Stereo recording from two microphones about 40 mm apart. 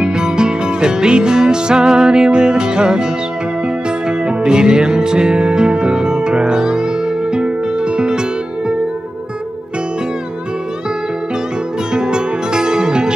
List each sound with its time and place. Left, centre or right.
0.0 s music: centre
4.3 s music: centre
11.9 s music: centre